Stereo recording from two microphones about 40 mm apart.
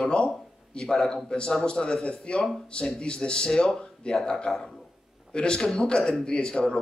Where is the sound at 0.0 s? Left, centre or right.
Left.